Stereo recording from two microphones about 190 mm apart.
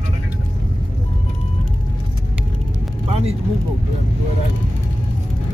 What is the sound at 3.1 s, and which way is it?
Speech, 30° right (ahead or behind).